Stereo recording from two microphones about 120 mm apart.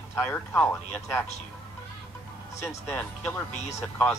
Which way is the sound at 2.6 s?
25° left (ahead or behind).